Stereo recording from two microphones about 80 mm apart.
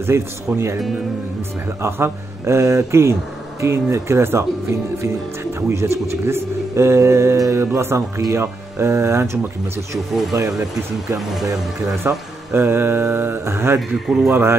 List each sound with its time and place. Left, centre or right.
0.1 s speech: right
1.8 s speech: right
11.1 s speech: centre
12.1 s mantra: right
13.7 s speech: centre
14.3 s speech: right